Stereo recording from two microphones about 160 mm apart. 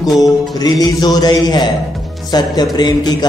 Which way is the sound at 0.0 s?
25° left (ahead or behind).